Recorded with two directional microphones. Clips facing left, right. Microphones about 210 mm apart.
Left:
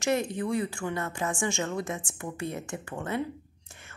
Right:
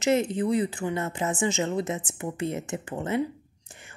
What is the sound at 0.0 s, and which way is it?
Speech, 20° right (ahead or behind).